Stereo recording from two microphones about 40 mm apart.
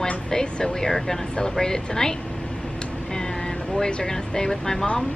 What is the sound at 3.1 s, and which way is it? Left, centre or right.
Vehicle, centre.